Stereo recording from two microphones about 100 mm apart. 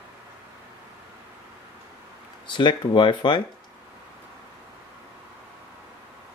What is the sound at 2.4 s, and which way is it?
Speech, 50° left (ahead or behind).